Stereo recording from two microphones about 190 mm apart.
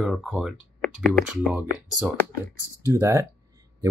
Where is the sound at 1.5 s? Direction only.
10° right (ahead or behind).